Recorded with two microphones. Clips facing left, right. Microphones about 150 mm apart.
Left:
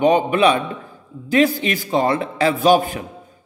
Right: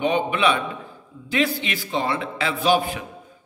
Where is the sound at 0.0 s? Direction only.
40° left (ahead or behind).